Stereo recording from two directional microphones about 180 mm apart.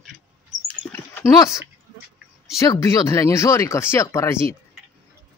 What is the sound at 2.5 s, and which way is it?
Speech, 20° left (ahead or behind).